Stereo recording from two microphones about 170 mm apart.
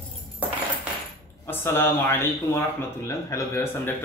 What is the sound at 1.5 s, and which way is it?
A man's voice, 15° left (ahead or behind).